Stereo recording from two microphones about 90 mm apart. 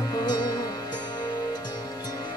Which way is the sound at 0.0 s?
50° left (ahead or behind).